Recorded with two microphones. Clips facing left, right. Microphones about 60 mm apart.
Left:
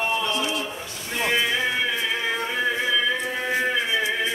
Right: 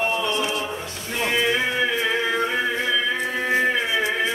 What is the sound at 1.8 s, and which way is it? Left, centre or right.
Music, centre.